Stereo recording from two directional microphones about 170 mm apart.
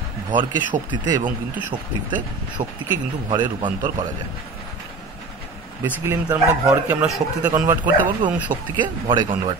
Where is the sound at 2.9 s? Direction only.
25° right (ahead or behind).